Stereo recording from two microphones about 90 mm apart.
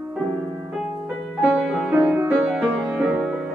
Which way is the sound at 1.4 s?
15° right (ahead or behind).